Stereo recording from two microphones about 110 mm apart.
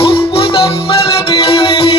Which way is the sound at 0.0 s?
60° left (ahead or behind).